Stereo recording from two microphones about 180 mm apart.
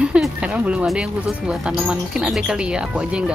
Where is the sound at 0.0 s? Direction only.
5° right (ahead or behind).